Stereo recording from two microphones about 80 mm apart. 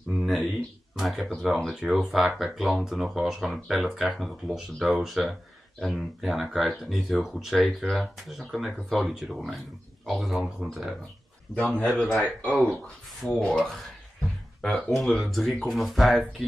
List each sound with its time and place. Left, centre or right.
0.1 s a sound: centre
1.0 s speech: centre
11.5 s speech: centre
11.9 s speech: centre
13.4 s speech: centre